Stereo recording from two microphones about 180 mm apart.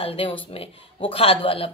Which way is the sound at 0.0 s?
30° left (ahead or behind).